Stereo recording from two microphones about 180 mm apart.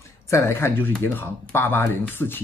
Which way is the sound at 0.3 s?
15° left (ahead or behind).